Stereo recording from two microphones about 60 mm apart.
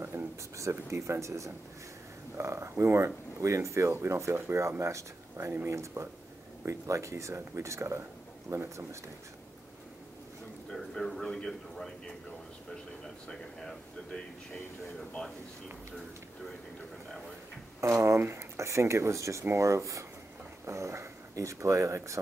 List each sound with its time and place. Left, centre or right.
0.1 s a sound: right
0.6 s speech: right
3.9 s speech: right
10.8 s a man's voice: centre
13.3 s speech: centre
17.7 s speech: right